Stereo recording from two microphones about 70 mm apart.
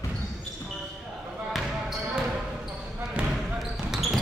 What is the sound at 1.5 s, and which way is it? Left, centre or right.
Basketball bounce, centre.